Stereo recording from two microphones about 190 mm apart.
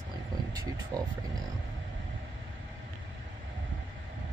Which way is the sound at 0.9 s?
20° right (ahead or behind).